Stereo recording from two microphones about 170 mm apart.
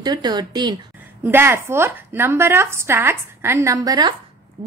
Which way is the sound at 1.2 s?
15° right (ahead or behind).